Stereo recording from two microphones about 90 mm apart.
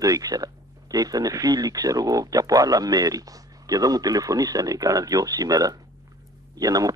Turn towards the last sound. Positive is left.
turn(degrees=-40)  # may be behind; listen again after turning